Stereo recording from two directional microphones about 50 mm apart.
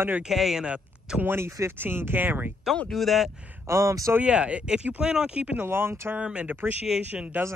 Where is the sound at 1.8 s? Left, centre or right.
Right.